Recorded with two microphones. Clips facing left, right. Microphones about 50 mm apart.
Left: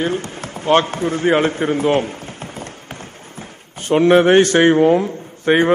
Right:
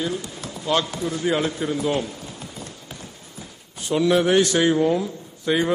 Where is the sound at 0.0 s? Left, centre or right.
Left.